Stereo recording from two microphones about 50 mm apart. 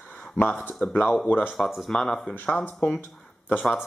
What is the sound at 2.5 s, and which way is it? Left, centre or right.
Speech, left.